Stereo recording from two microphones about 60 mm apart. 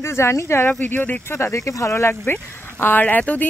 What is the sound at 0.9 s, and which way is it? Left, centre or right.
Speech, left.